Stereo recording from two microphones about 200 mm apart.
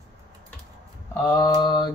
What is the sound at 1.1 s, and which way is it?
Speech, 20° left (ahead or behind).